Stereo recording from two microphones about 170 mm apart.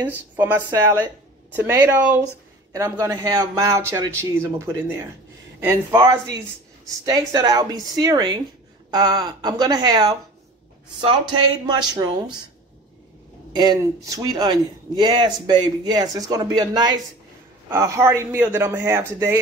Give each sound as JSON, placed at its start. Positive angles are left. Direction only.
{"t": 0.6, "sound": "a man's voice", "side_deg": -25}
{"t": 0.9, "sound": "a man's voice", "side_deg": -10}
{"t": 13.6, "sound": "a man's voice", "side_deg": -20}